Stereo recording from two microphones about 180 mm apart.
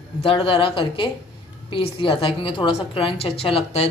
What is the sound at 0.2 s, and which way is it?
Speech, 30° left (ahead or behind).